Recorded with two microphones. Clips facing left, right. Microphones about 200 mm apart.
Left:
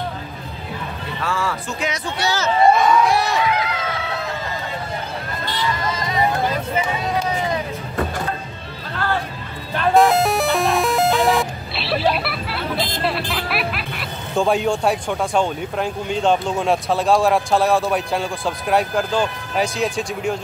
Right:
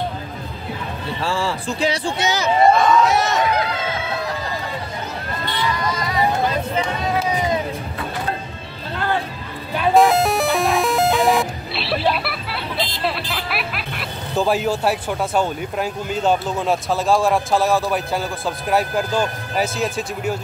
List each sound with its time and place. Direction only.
1.2 s speech: 30° right (ahead or behind)
2.7 s speech: centre (ahead or behind)
6.8 s run: centre (ahead or behind)
8.9 s music: 20° right (ahead or behind)
9.8 s music: centre (ahead or behind)
12.7 s music: 50° left (ahead or behind)
13.0 s speech: centre (ahead or behind)